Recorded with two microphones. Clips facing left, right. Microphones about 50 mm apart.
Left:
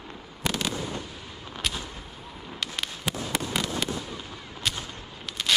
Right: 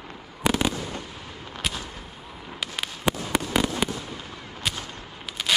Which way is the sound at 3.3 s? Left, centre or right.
Centre.